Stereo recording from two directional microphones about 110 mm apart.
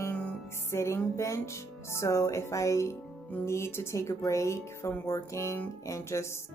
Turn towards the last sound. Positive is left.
turn(degrees=25)  # may be behind; listen again after turning